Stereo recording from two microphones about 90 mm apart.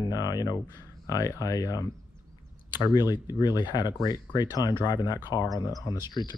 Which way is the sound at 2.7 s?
50° left (ahead or behind).